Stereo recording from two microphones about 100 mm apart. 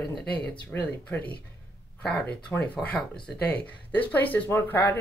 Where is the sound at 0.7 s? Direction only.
15° left (ahead or behind).